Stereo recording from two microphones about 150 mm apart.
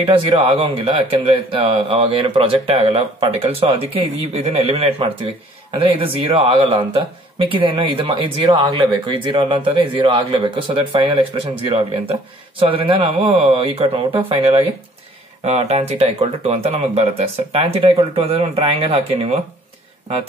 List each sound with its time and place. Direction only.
0.0 s speech: 35° right (ahead or behind)